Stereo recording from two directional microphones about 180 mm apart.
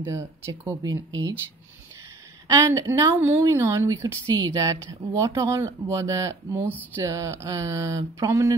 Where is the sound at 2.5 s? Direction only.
20° right (ahead or behind).